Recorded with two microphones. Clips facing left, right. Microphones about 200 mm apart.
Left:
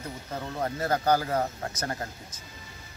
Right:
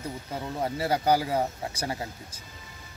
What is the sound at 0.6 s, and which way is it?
Speech, 10° right (ahead or behind).